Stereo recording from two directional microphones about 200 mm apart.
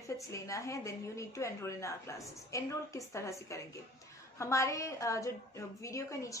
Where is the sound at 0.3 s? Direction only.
15° left (ahead or behind).